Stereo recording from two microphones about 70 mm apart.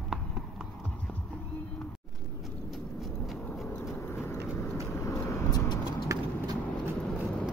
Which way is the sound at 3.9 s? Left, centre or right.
Left.